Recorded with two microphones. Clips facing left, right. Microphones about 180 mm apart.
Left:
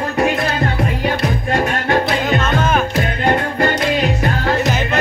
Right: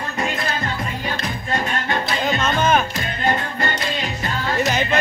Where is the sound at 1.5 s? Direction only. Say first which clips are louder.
Left 5 dB; 65° left (ahead or behind).